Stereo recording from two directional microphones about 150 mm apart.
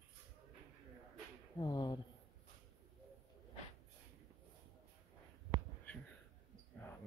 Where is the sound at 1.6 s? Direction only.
25° left (ahead or behind).